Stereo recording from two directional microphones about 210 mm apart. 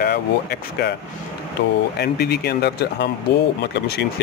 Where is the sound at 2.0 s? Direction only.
50° left (ahead or behind).